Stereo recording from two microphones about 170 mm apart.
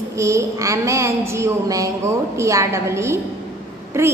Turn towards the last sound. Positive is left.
turn(degrees=-15)  # may be behind; listen again after turning